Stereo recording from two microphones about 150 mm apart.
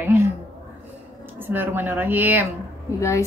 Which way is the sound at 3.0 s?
20° left (ahead or behind).